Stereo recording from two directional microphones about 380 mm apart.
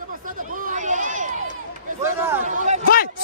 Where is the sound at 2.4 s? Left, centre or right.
Centre.